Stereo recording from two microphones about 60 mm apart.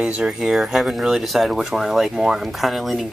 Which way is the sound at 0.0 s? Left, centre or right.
Centre.